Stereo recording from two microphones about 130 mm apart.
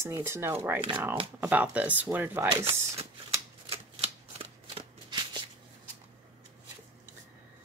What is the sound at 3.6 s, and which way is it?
Shuffling cards, 50° right (ahead or behind).